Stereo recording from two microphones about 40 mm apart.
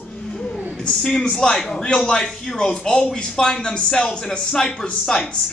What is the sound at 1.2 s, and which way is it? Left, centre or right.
Speech, centre.